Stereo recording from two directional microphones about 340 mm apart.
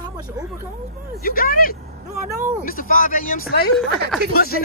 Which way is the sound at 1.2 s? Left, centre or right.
Left.